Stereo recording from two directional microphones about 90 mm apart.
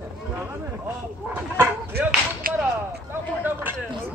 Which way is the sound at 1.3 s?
25° right (ahead or behind).